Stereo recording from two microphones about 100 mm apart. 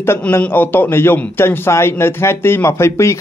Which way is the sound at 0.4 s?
20° left (ahead or behind).